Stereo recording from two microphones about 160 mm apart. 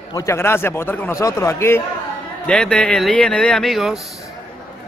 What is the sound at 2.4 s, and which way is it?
Speech, 5° left (ahead or behind).